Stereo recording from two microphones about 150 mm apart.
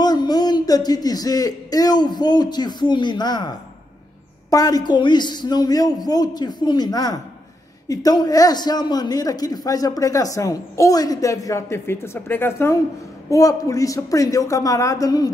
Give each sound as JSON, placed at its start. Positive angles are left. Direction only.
{"t": 0.0, "sound": "a man's voice", "side_deg": 25}